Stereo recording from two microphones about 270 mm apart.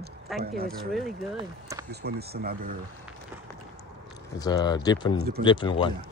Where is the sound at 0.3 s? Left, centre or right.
Centre.